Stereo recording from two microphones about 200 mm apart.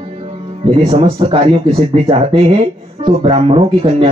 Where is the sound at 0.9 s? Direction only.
30° right (ahead or behind).